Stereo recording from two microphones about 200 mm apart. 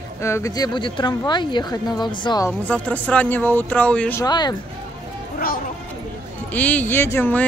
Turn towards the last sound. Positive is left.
turn(degrees=10)  # may be behind; listen again after turning